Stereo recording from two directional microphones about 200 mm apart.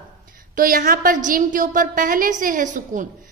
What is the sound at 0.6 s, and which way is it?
A woman's voice, 45° right (ahead or behind).